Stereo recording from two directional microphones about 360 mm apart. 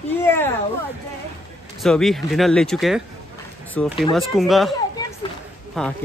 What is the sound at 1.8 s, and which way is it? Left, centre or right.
Speech, centre.